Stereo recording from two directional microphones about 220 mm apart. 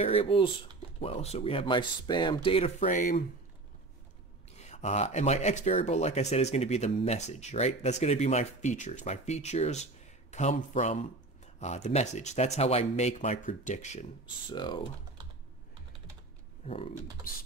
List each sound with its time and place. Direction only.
0.0 s speech: 25° left (ahead or behind)
4.6 s speech: 30° left (ahead or behind)
14.5 s speech: 20° left (ahead or behind)
16.6 s speech: 25° left (ahead or behind)